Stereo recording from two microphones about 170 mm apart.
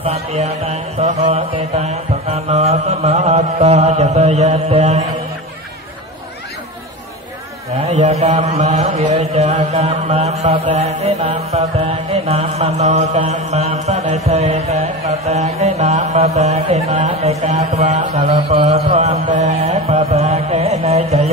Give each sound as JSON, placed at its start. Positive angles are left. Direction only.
{"t": 0.0, "sound": "mantra", "side_deg": -35}
{"t": 7.8, "sound": "mantra", "side_deg": -40}